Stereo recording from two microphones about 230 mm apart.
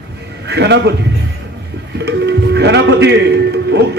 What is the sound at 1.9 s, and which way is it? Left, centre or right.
Music, right.